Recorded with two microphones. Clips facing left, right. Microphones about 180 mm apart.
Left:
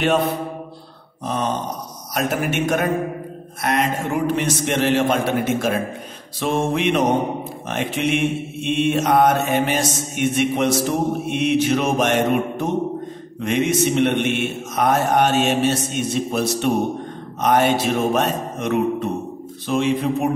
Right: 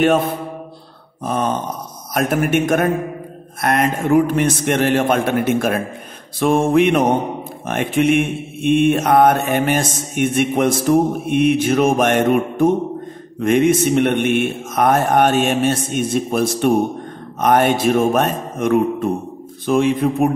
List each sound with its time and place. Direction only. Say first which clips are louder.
0.0 s mantra: right 3 dB; 50° right (ahead or behind)
3.6 s a man's voice: right 4 dB; 55° right (ahead or behind)
6.4 s mantra: right 6 dB; 50° right (ahead or behind)